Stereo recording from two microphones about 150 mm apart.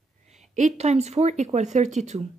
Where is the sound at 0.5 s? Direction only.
55° right (ahead or behind).